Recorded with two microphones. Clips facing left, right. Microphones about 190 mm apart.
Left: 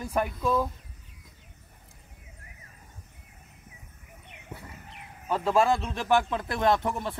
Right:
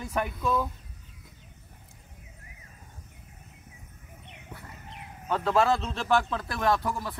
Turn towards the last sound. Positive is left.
turn(degrees=25)  # may be behind; listen again after turning